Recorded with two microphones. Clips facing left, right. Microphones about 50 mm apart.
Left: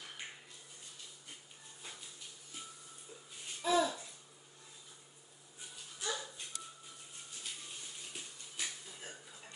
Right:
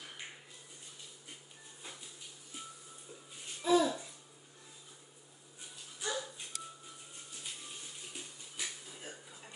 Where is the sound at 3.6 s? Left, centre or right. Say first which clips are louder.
Right 3 dB; centre.